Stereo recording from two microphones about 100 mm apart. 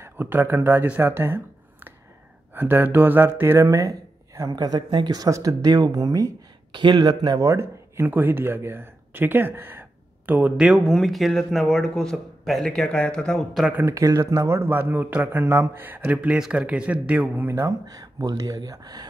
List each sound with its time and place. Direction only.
0.0 s speech: 20° right (ahead or behind)
10.7 s speech: centre (ahead or behind)
13.8 s speech: 35° right (ahead or behind); by 17.5 s 15° right (ahead or behind)
17.5 s speech: 30° right (ahead or behind)